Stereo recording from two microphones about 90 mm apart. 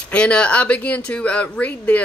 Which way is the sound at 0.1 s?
10° left (ahead or behind).